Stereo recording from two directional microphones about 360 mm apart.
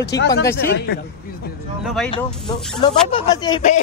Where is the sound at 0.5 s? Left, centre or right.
Left.